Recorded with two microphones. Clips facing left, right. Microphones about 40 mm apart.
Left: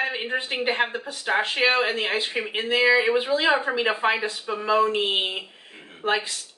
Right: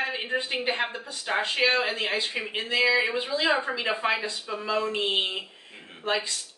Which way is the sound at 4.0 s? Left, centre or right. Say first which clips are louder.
Left 4 dB; centre.